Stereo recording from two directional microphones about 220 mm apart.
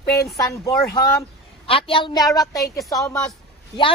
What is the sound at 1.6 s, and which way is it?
A woman's voice, 25° left (ahead or behind).